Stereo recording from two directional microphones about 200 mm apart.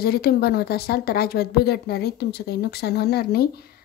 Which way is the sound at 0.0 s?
50° left (ahead or behind).